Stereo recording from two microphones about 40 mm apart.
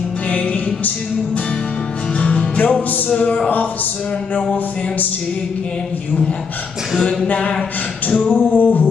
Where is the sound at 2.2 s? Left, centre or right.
Left.